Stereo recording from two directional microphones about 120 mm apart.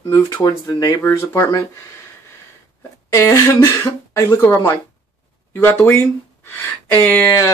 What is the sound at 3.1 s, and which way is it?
Speech, 25° left (ahead or behind).